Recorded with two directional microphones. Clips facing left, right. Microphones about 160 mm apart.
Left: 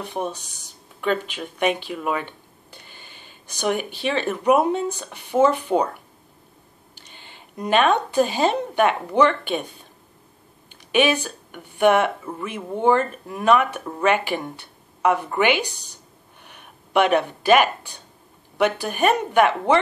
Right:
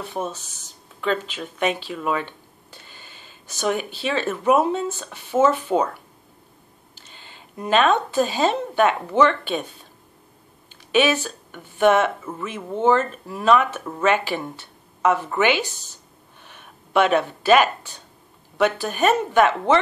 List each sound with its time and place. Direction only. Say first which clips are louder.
0.0 s speech: left 1 dB; 15° left (ahead or behind)
2.0 s a sound: right 1 dB; 10° left (ahead or behind)
3.4 s speech: even; 15° left (ahead or behind)
7.8 s speech: left 1 dB; 15° left (ahead or behind)
10.9 s speech: even; 15° left (ahead or behind)